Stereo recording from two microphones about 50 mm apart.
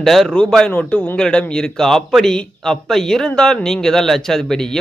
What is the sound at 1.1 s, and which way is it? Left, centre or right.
Speech, centre.